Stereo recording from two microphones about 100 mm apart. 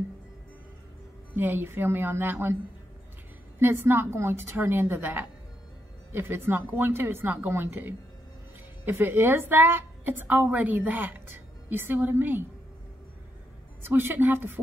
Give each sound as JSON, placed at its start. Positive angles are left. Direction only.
{"t": 1.3, "sound": "a woman's voice", "side_deg": -20}
{"t": 3.5, "sound": "a woman's voice", "side_deg": -20}
{"t": 13.8, "sound": "a woman's voice", "side_deg": -25}